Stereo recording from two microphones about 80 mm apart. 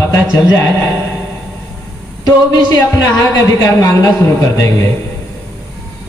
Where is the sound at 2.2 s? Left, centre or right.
Left.